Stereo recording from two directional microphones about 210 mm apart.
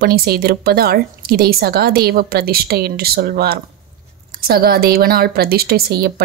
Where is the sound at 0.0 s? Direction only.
45° right (ahead or behind).